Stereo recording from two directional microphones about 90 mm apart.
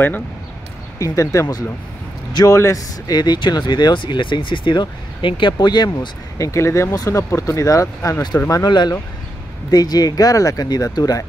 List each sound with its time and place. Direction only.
0.9 s speech: 35° left (ahead or behind); by 5.9 s 55° left (ahead or behind)
6.3 s speech: 35° left (ahead or behind)
8.5 s speech: 45° left (ahead or behind)